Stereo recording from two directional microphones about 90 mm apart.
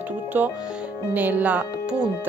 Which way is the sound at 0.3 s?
20° right (ahead or behind).